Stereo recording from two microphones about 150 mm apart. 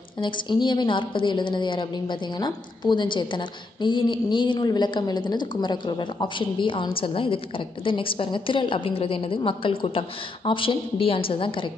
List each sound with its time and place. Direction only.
0.2 s a woman's voice: 30° left (ahead or behind)